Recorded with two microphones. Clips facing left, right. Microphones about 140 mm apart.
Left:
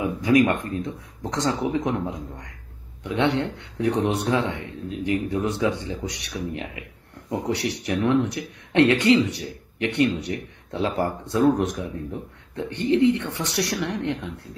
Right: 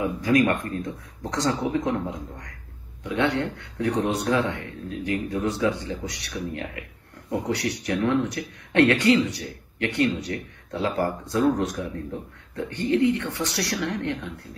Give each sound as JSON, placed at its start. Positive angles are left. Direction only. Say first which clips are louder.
{"t": 0.0, "sound": "a man's voice", "louder": "left 2 dB", "side_deg": 20}